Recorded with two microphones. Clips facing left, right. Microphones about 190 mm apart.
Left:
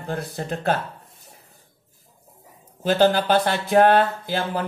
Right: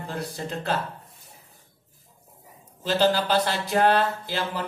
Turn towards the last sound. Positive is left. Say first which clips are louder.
# left 4 dB
turn(degrees=50)  # may be behind; listen again after turning